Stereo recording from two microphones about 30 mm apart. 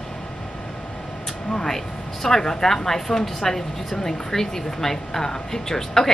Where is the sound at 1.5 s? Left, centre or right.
Centre.